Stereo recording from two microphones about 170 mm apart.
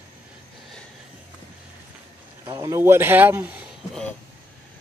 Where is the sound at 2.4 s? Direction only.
20° right (ahead or behind).